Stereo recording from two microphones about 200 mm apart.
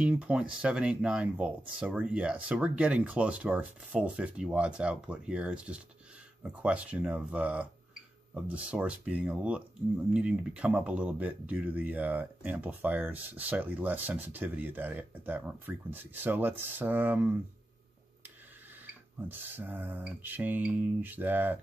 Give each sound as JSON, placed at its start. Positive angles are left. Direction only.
{"t": 0.0, "sound": "speech", "side_deg": -5}
{"t": 19.2, "sound": "speech", "side_deg": -10}